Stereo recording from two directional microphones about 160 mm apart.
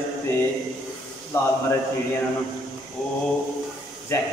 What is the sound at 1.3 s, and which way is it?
Speech, 15° left (ahead or behind).